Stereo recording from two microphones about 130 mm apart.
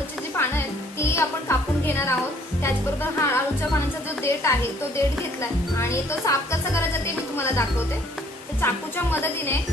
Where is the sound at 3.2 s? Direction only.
20° left (ahead or behind).